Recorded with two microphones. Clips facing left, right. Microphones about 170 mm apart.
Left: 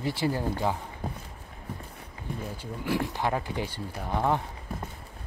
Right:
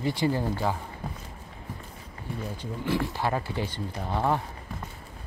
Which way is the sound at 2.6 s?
15° left (ahead or behind).